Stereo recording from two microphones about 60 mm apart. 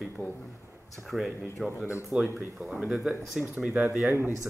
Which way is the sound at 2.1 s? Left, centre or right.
Centre.